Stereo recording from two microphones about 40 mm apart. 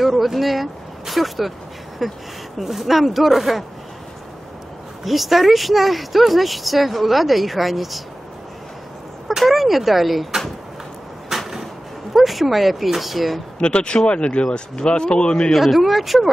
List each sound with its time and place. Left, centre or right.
0.0 s speech: centre
5.0 s speech: centre
9.4 s speech: centre
11.2 s a sound: centre
12.1 s speech: centre
13.6 s speech: left
15.5 s speech: centre